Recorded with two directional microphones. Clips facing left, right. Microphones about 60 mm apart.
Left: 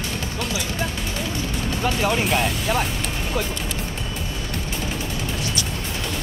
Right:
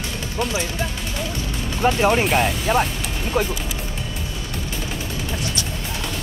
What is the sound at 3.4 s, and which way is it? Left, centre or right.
Speech, right.